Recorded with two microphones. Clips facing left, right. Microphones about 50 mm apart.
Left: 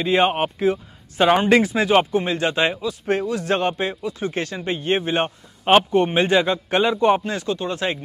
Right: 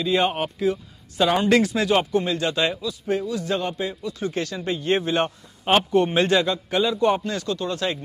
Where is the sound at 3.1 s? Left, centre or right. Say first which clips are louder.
Left 3 dB; left.